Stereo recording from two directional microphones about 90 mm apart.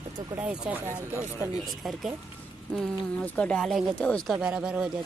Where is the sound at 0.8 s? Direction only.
30° right (ahead or behind).